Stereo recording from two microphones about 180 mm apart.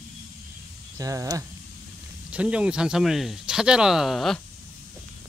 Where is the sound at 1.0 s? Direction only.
20° right (ahead or behind).